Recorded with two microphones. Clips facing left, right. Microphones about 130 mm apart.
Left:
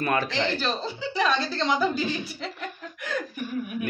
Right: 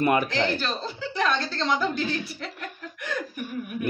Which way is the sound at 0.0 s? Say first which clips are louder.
Right 3 dB; 20° right (ahead or behind).